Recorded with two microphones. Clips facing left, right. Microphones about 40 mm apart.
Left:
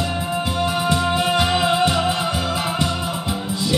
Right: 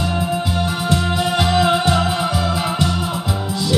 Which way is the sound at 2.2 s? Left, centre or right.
Centre.